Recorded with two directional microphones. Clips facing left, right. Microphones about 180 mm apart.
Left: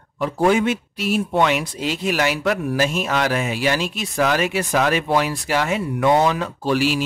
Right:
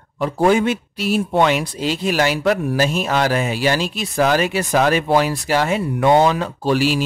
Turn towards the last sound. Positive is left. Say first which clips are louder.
# right 2 dB
turn(degrees=-35)  # may be behind; listen again after turning